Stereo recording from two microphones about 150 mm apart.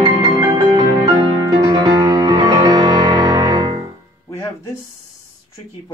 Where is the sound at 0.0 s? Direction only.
25° right (ahead or behind).